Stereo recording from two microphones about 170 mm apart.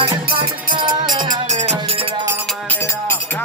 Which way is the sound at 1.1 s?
50° right (ahead or behind).